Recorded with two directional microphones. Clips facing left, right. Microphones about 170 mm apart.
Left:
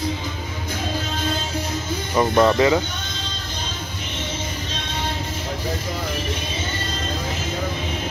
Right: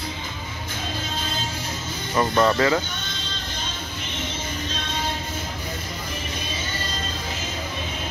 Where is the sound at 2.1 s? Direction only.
15° left (ahead or behind).